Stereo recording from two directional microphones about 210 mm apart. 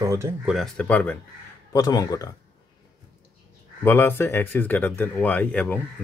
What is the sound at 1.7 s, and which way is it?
Speech, 15° left (ahead or behind).